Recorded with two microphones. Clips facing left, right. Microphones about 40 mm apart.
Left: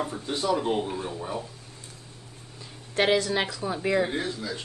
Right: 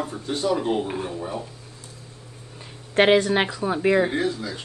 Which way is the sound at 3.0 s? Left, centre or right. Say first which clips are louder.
Right 6 dB; right.